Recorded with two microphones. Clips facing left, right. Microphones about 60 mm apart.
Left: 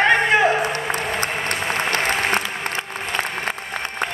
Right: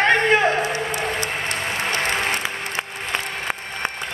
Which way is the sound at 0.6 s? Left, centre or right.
Left.